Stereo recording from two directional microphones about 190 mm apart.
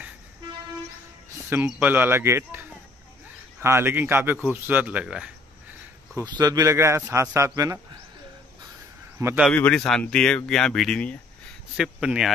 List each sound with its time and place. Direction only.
1.5 s speech: 10° right (ahead or behind)
3.6 s speech: 15° right (ahead or behind)
6.1 s speech: 20° right (ahead or behind)
9.2 s speech: 10° right (ahead or behind)
9.5 s speech: 5° left (ahead or behind)